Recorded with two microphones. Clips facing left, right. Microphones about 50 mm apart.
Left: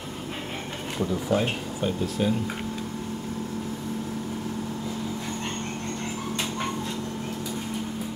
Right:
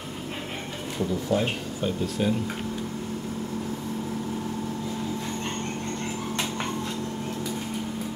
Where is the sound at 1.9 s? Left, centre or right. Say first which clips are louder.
Even; centre.